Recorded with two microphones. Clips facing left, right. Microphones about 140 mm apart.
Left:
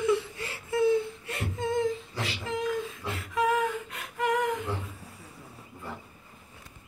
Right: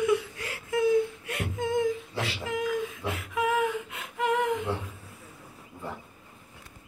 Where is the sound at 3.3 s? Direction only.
15° right (ahead or behind).